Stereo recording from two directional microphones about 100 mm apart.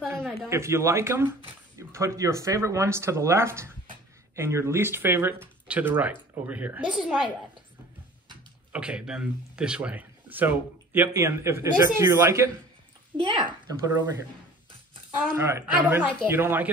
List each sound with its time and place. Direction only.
0.2 s a sound: 5° left (ahead or behind)
0.5 s speech: 30° right (ahead or behind); by 7.1 s 10° right (ahead or behind)
8.7 s speech: 10° right (ahead or behind); by 12.4 s 30° right (ahead or behind)
13.2 s a child's voice: 55° right (ahead or behind)
13.7 s speech: 40° right (ahead or behind)
15.3 s speech: 25° right (ahead or behind)
15.8 s a woman's voice: 15° right (ahead or behind)